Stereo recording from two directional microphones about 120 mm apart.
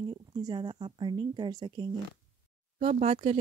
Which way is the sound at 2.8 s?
70° right (ahead or behind).